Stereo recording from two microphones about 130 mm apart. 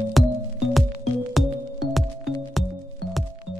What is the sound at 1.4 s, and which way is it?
Music, centre (ahead or behind).